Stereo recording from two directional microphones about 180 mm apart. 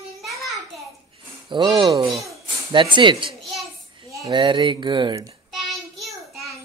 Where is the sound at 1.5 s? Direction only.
25° right (ahead or behind).